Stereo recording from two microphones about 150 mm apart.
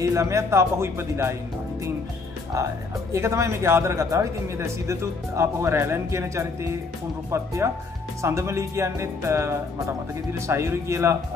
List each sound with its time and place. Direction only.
0.0 s speech: 20° right (ahead or behind)
3.1 s speech: 20° right (ahead or behind)